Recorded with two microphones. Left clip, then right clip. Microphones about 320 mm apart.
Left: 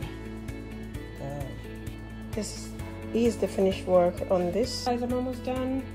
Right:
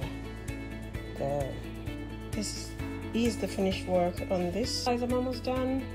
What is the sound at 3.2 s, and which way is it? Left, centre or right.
Speech, left.